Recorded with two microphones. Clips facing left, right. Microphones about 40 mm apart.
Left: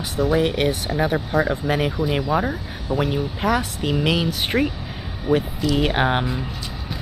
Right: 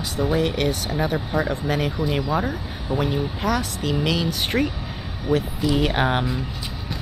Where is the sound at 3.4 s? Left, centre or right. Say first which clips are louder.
Left 2 dB; left.